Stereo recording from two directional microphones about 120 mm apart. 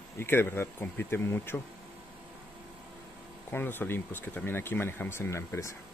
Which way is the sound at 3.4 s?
15° left (ahead or behind).